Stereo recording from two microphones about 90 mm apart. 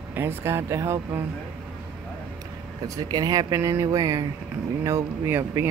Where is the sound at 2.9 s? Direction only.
45° right (ahead or behind).